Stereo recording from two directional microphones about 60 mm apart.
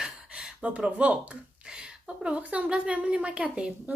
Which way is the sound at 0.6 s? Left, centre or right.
Right.